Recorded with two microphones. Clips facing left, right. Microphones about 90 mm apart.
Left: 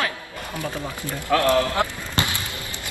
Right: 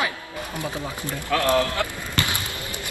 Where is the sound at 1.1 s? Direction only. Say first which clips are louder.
Left 3 dB; 20° left (ahead or behind).